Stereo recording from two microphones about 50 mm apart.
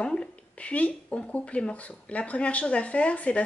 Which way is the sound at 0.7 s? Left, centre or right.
Left.